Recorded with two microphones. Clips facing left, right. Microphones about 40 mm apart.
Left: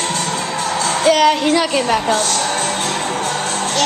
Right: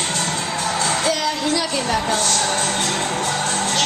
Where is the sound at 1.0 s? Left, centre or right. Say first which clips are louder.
Left 8 dB; left.